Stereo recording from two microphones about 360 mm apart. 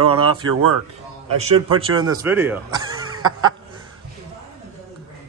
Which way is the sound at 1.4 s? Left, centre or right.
Centre.